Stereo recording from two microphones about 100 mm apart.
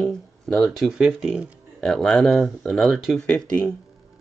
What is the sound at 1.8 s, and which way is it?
Speech, 5° left (ahead or behind).